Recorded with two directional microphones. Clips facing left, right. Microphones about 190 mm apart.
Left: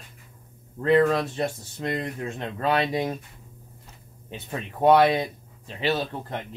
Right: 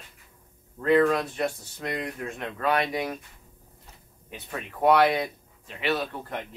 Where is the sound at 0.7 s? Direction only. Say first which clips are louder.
Left 1 dB; 25° left (ahead or behind).